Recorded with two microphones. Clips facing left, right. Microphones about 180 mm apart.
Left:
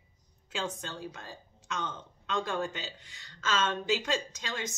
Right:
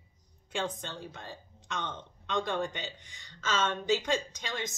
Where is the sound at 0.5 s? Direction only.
5° left (ahead or behind).